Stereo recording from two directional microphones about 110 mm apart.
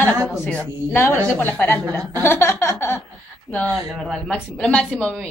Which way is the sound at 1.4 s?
15° left (ahead or behind).